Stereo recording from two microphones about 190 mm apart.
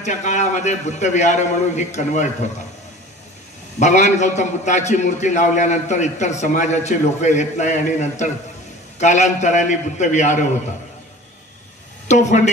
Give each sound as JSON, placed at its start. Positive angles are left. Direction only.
{"t": 0.0, "sound": "a man's voice", "side_deg": 40}
{"t": 3.8, "sound": "a man's voice", "side_deg": 40}
{"t": 12.1, "sound": "a man's voice", "side_deg": 40}